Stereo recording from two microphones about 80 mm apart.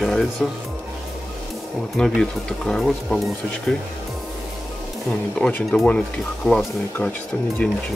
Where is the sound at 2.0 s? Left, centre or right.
Centre.